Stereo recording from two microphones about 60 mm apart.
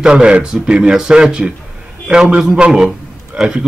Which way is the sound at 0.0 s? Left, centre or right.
Centre.